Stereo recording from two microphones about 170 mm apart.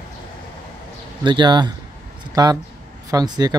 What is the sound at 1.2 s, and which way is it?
Speech, 25° right (ahead or behind).